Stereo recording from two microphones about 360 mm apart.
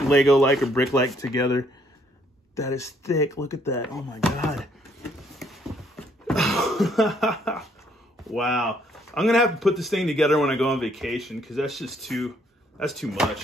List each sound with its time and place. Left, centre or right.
0.1 s a man's voice: centre
5.4 s a sound: centre
6.2 s a man's voice: centre